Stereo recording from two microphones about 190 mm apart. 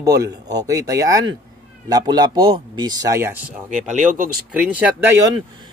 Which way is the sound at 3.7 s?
40° right (ahead or behind).